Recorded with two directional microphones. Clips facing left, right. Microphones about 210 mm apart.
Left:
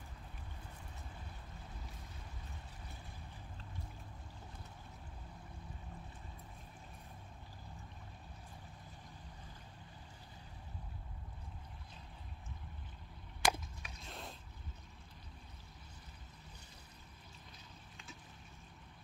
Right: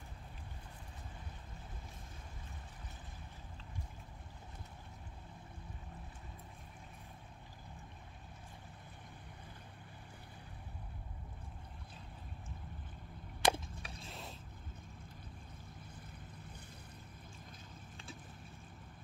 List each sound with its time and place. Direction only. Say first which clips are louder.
13.4 s chop: right 3 dB; 30° right (ahead or behind)
14.0 s mechanisms: left 2 dB; centre (ahead or behind)